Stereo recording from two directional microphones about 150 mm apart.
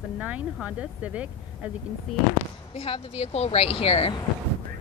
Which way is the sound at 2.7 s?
40° left (ahead or behind).